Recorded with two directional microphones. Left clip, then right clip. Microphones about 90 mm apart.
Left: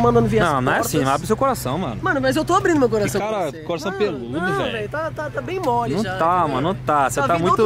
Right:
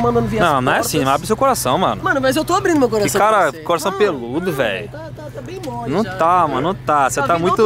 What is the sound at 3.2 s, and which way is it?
Speech, 35° right (ahead or behind).